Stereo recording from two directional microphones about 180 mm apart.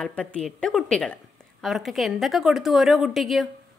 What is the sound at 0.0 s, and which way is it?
A woman's voice, 5° left (ahead or behind).